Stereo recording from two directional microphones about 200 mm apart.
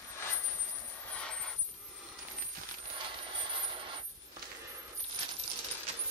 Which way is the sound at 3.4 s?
25° right (ahead or behind).